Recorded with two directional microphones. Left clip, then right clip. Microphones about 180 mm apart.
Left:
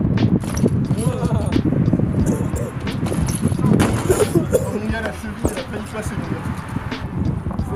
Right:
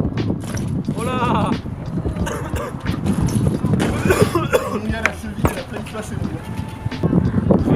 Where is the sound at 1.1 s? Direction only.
20° right (ahead or behind).